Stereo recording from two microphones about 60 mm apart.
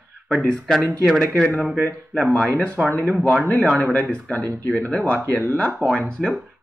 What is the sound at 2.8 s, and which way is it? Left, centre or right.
Speech, centre.